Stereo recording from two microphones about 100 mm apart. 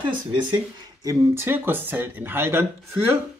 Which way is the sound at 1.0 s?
30° right (ahead or behind).